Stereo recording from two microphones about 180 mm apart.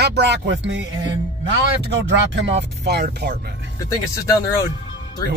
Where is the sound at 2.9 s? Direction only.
65° right (ahead or behind).